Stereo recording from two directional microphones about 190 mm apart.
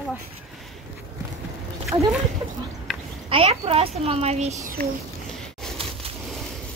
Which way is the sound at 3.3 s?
30° right (ahead or behind).